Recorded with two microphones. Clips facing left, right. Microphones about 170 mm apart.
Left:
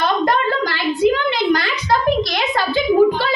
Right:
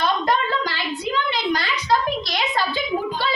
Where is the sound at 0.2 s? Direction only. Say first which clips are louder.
Left 4 dB; 55° left (ahead or behind).